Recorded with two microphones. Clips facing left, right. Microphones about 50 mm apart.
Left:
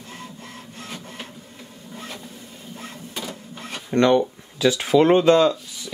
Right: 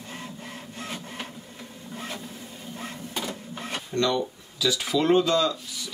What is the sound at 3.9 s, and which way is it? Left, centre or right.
Speech, left.